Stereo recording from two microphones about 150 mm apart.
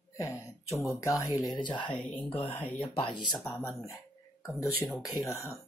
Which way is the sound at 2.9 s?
35° left (ahead or behind).